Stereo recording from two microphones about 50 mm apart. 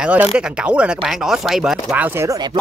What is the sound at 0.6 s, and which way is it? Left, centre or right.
Speech, right.